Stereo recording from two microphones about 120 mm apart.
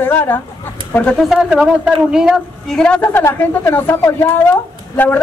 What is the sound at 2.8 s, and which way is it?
A woman's voice, 10° left (ahead or behind).